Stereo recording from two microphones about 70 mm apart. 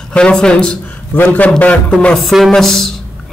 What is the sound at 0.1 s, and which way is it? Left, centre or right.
A man's voice, centre.